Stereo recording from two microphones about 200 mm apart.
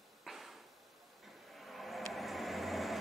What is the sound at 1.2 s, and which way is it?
Vehicle, centre (ahead or behind).